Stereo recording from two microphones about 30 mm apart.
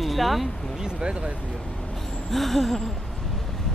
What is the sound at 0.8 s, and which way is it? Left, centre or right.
Speech, right.